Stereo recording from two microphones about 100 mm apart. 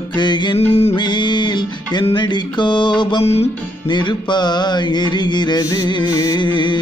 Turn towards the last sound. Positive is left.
turn(degrees=50)  # may be behind; listen again after turning